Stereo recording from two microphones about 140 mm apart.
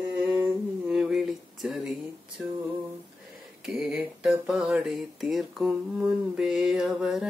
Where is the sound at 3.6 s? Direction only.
Centre (ahead or behind).